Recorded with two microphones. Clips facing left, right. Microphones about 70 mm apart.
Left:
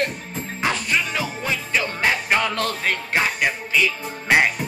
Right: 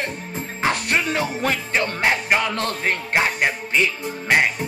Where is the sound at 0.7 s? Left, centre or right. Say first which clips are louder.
Right 1 dB; right.